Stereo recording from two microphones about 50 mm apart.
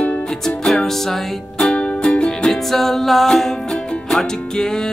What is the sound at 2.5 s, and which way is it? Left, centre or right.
Music, centre.